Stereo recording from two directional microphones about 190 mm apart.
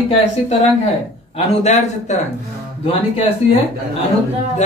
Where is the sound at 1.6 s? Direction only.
35° left (ahead or behind).